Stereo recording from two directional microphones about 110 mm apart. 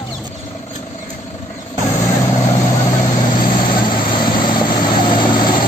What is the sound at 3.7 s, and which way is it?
Vehicle, 45° left (ahead or behind).